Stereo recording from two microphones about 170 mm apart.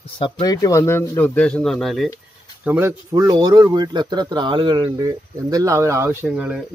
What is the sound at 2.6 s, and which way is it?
Speech, 10° right (ahead or behind).